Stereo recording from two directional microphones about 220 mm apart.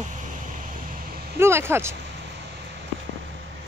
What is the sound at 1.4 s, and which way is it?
Speech, 10° right (ahead or behind).